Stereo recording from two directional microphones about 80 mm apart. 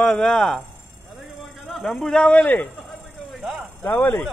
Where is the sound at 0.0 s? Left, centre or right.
Centre.